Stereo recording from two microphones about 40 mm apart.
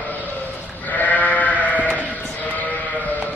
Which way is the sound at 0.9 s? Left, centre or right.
Left.